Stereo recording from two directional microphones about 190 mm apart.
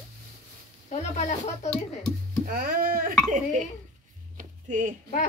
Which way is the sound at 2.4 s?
50° right (ahead or behind).